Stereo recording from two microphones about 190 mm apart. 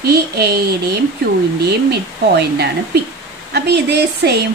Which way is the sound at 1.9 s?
60° right (ahead or behind).